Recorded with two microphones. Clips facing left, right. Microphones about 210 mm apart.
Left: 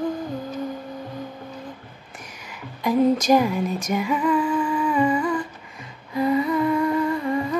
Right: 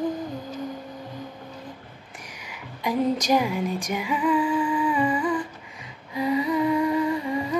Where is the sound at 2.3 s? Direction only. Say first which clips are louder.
Left 2 dB; 15° right (ahead or behind).